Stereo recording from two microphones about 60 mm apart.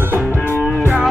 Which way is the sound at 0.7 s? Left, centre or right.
Left.